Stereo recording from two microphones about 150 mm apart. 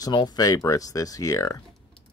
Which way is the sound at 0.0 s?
30° left (ahead or behind).